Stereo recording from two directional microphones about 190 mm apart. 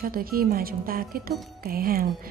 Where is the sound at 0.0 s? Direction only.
50° right (ahead or behind).